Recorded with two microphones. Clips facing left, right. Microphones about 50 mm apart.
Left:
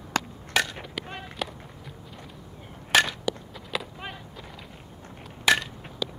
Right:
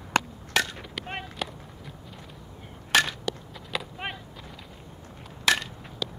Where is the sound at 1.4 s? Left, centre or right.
Centre.